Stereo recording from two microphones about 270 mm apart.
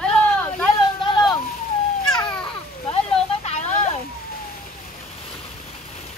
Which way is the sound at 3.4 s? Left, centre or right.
Left.